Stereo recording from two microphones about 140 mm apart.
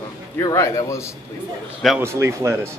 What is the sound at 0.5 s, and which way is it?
Speech, 20° left (ahead or behind).